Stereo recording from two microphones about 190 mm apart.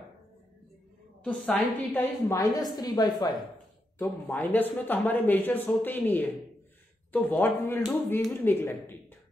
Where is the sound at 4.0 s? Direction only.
10° left (ahead or behind).